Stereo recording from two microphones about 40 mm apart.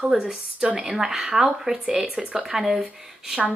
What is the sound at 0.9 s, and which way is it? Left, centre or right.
Speech, centre.